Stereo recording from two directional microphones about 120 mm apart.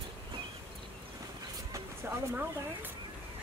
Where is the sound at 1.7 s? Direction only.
20° right (ahead or behind).